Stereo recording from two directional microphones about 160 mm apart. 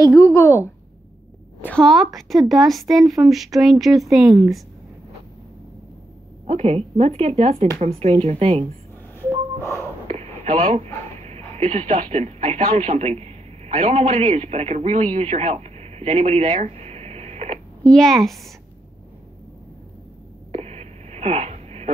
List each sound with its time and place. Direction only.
0.0 s a woman's voice: 20° left (ahead or behind)
1.6 s a woman's voice: 5° left (ahead or behind)
4.3 s a woman's voice: 20° right (ahead or behind)
6.4 s speech: 40° right (ahead or behind)
9.3 s gasp: 20° right (ahead or behind)
10.0 s a sound: 50° right (ahead or behind)
11.5 s speech: 45° right (ahead or behind)
17.8 s a woman's voice: 5° left (ahead or behind)
20.5 s a sound: 45° right (ahead or behind)